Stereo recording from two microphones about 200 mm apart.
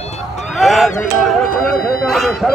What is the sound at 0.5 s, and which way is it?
Speech, centre (ahead or behind).